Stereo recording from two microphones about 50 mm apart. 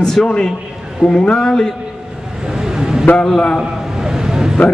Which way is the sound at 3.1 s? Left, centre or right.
Centre.